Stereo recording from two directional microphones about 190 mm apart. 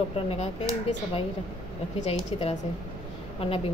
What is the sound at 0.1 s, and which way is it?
Speech, 30° left (ahead or behind).